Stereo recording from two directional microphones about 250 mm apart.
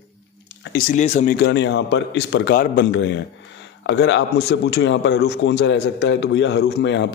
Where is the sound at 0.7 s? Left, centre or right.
Left.